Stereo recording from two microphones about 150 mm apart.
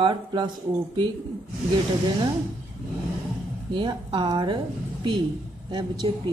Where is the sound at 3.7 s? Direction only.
30° right (ahead or behind).